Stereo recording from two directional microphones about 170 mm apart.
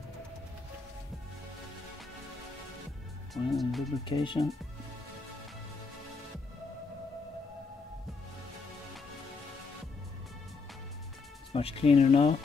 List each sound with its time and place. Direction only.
3.4 s speech: centre (ahead or behind)
4.0 s speech: 30° left (ahead or behind)
11.5 s speech: 35° left (ahead or behind)